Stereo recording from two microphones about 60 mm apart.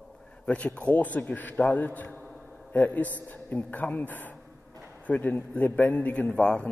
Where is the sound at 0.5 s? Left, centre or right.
Centre.